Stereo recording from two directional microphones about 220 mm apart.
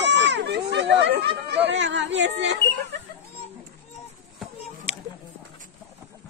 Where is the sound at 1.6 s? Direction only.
55° right (ahead or behind).